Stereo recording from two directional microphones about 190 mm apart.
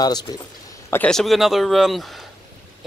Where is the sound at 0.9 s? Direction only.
5° left (ahead or behind).